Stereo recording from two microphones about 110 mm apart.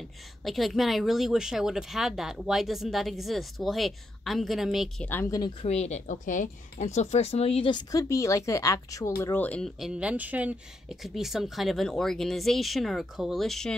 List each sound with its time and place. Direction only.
0.5 s speech: centre (ahead or behind)
5.2 s speech: 30° left (ahead or behind)
5.6 s speech: 80° left; by 7.7 s 65° left (ahead or behind)
7.7 s speech: 30° left (ahead or behind)
9.6 s speech: centre (ahead or behind)
11.1 s speech: 5° right (ahead or behind)